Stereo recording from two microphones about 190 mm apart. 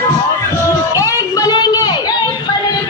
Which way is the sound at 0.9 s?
15° left (ahead or behind).